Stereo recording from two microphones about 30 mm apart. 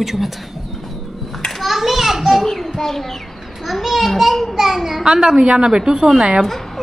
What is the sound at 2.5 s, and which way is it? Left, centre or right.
Child singing, centre.